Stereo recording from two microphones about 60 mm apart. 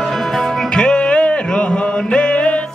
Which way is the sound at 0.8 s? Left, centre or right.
Centre.